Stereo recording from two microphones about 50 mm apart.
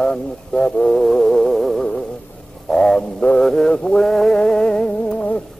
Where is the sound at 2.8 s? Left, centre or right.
Centre.